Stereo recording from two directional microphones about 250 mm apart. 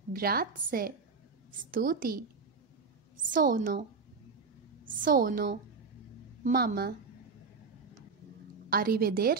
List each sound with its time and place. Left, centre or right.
0.1 s a woman's voice: right
4.8 s a woman's voice: right
8.6 s a woman's voice: right